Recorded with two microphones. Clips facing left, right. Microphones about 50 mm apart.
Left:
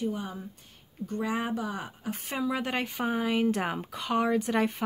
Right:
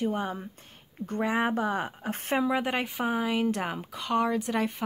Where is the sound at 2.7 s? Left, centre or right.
Centre.